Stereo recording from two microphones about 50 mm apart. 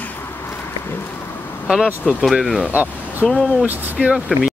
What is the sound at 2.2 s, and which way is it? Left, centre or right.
Speech, centre.